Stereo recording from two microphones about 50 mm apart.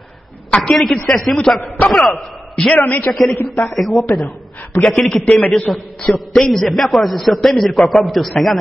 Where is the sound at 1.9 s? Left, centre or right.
Centre.